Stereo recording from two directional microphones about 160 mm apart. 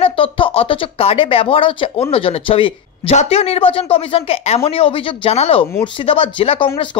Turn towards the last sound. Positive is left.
turn(degrees=35)  # may be behind; listen again after turning